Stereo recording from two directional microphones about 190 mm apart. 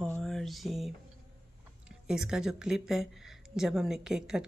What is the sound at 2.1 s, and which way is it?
A woman's voice, 5° right (ahead or behind).